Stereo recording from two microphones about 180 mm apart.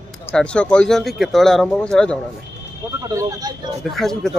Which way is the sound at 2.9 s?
20° right (ahead or behind).